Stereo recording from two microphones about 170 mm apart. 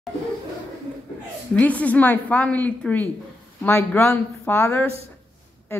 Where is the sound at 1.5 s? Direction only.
10° left (ahead or behind).